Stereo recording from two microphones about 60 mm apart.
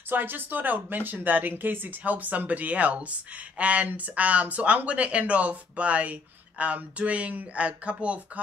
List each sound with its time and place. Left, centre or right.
0.1 s speech: right